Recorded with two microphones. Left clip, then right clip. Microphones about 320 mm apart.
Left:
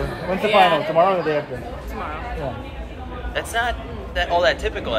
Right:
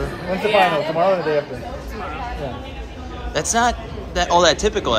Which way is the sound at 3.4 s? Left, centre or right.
Centre.